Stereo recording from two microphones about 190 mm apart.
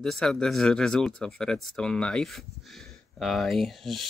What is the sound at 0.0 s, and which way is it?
Speech, centre (ahead or behind).